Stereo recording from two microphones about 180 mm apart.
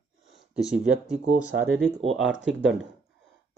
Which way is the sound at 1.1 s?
40° right (ahead or behind).